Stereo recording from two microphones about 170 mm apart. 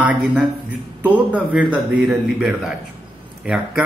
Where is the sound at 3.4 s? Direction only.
5° right (ahead or behind).